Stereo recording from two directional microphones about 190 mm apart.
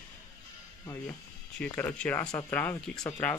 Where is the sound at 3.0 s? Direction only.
20° left (ahead or behind).